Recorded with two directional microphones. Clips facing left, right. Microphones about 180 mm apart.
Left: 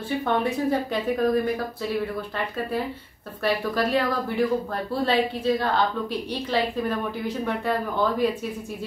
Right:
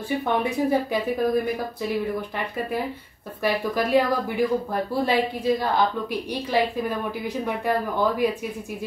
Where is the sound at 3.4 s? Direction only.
10° right (ahead or behind).